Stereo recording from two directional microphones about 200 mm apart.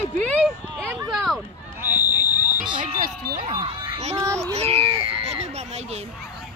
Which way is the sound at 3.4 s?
25° right (ahead or behind).